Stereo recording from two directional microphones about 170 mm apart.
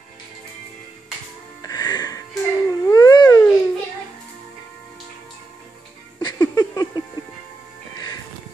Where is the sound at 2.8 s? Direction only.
20° left (ahead or behind).